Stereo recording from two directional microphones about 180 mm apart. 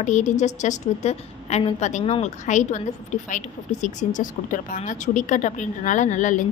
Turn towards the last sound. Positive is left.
turn(degrees=45)  # may be behind; listen again after turning